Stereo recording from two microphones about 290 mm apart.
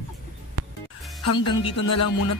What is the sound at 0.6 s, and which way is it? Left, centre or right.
Music, right.